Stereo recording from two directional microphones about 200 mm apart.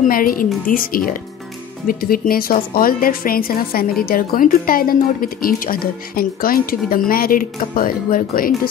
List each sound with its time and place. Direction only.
0.0 s speech: 45° left (ahead or behind)